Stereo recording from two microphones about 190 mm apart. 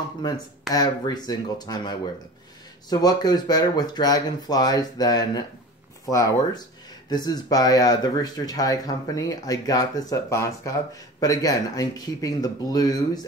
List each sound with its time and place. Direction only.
0.7 s speech: 20° left (ahead or behind)